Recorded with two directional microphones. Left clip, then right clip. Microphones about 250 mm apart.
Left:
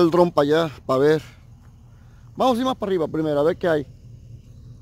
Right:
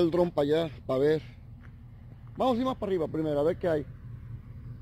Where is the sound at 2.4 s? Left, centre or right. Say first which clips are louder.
Left 7 dB; left.